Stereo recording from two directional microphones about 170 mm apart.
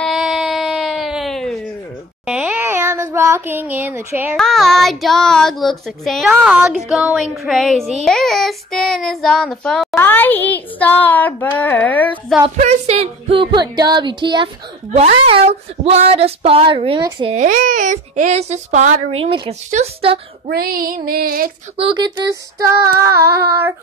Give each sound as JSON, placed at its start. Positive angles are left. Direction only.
{"t": 0.0, "sound": "a sound", "side_deg": 0}
{"t": 4.4, "sound": "child singing", "side_deg": 0}
{"t": 9.9, "sound": "speech", "side_deg": 10}
{"t": 12.4, "sound": "music", "side_deg": -40}
{"t": 15.0, "sound": "speech", "side_deg": -35}
{"t": 17.3, "sound": "speech", "side_deg": -45}
{"t": 20.4, "sound": "child singing", "side_deg": -60}
{"t": 21.7, "sound": "music", "side_deg": -30}